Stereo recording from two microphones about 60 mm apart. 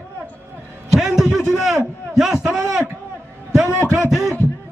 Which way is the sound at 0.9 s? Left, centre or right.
Centre.